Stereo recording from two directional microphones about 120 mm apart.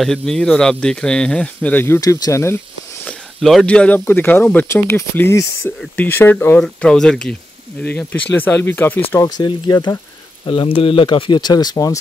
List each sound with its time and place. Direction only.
0.0 s speech: 5° left (ahead or behind)
2.0 s speech: 30° left (ahead or behind)
3.1 s speech: 5° left (ahead or behind)
6.6 s speech: 5° left (ahead or behind)
9.4 s speech: 35° left (ahead or behind)